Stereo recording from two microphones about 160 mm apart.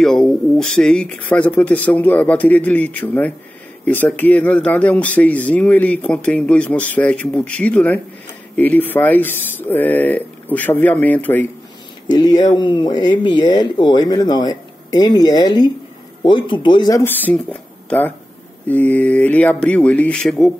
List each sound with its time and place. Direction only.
0.0 s speech: centre (ahead or behind)
12.1 s speech: 25° left (ahead or behind)
17.0 s speech: 10° left (ahead or behind)